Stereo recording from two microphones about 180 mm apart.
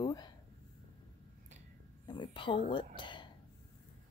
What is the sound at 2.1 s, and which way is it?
Speech, 25° left (ahead or behind).